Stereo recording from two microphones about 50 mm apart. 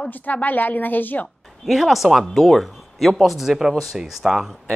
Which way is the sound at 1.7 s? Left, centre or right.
Centre.